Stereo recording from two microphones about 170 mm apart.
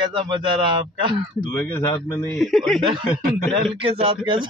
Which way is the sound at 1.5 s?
10° left (ahead or behind).